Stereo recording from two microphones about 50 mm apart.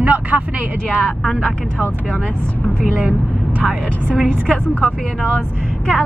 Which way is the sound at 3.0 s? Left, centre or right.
Right.